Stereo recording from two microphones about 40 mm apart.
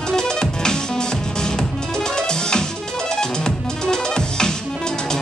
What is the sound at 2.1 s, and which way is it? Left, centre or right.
Music, centre.